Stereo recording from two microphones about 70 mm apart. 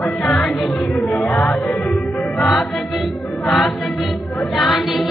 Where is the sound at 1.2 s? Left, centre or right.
Centre.